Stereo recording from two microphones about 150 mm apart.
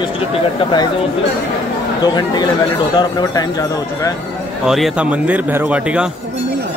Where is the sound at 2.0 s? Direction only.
30° left (ahead or behind).